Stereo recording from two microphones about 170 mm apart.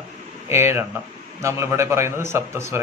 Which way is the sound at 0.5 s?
15° right (ahead or behind).